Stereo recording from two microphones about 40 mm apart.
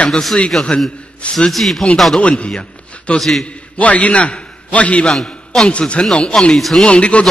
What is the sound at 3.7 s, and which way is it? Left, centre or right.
A man's voice, left.